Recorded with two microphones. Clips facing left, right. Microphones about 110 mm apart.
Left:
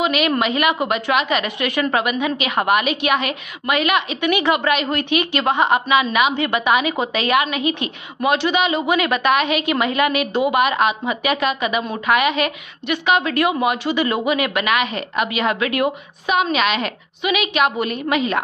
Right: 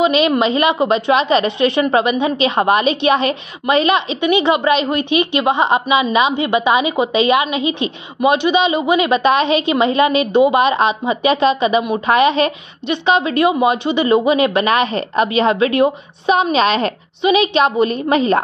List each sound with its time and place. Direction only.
0.0 s a woman's voice: 25° right (ahead or behind)